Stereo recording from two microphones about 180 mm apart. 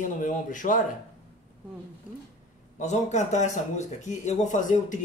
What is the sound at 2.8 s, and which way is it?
A man's voice, 40° left (ahead or behind).